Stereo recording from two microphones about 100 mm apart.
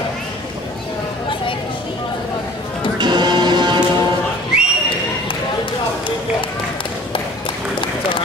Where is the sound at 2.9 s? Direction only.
45° right (ahead or behind).